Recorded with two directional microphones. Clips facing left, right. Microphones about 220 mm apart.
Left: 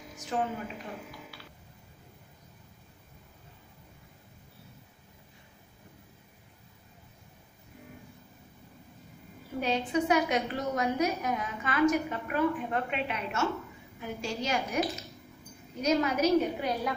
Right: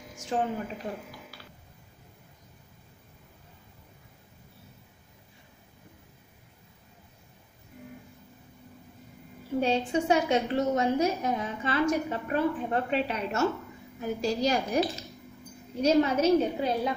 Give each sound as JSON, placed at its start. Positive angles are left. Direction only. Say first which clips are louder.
{"t": 0.3, "sound": "a woman's voice", "louder": "right 3 dB", "side_deg": -30}
{"t": 1.3, "sound": "a sound", "louder": "even", "side_deg": -40}
{"t": 9.6, "sound": "a woman's voice", "louder": "right 2 dB", "side_deg": -30}
{"t": 15.8, "sound": "a woman's voice", "louder": "right 4 dB", "side_deg": -30}